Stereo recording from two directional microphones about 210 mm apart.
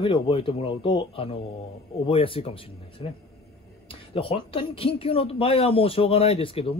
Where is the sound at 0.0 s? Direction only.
25° left (ahead or behind).